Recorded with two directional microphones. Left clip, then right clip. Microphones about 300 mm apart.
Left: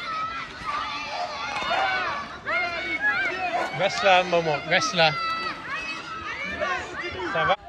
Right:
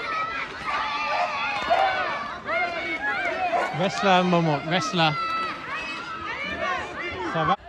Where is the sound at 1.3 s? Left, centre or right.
Right.